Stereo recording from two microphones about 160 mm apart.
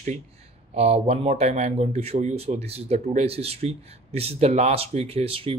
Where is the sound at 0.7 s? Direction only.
40° right (ahead or behind).